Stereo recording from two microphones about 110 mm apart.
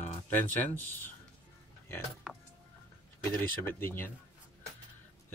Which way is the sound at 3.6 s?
20° left (ahead or behind).